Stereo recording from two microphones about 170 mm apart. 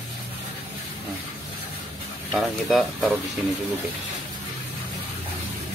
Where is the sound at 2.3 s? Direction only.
Centre (ahead or behind).